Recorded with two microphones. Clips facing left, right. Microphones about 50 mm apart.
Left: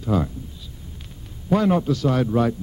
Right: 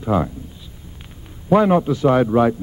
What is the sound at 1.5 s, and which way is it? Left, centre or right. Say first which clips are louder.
Speech: right 5 dB; right.